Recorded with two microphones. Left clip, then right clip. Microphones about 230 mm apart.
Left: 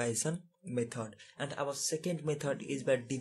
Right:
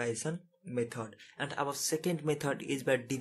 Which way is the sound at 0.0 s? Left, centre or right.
Centre.